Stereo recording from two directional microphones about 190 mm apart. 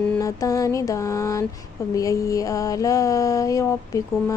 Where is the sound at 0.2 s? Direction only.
15° left (ahead or behind).